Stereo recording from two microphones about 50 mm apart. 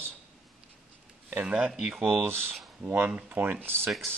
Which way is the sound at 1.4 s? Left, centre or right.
Centre.